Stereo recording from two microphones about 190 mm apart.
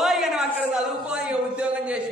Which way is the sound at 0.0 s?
Centre (ahead or behind).